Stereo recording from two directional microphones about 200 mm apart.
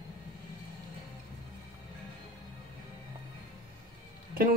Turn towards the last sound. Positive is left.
turn(degrees=-45)  # may be behind; listen again after turning